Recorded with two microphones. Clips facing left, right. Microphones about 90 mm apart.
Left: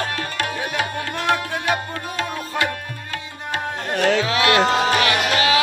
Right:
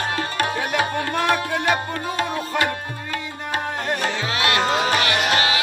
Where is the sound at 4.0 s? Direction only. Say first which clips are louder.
Left 5 dB; 80° left.